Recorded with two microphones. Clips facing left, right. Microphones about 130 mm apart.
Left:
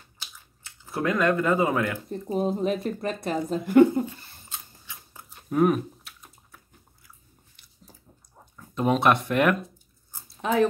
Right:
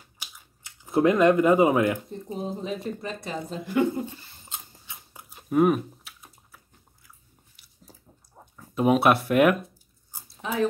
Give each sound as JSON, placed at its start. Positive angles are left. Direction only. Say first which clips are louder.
{"t": 0.2, "sound": "scissors", "louder": "even", "side_deg": -15}
{"t": 2.3, "sound": "speech", "louder": "left 7 dB", "side_deg": 60}
{"t": 4.0, "sound": "a sound", "louder": "left 3 dB", "side_deg": -20}
{"t": 5.3, "sound": "typing", "louder": "right 1 dB", "side_deg": -5}
{"t": 8.5, "sound": "speech", "louder": "right 3 dB", "side_deg": -10}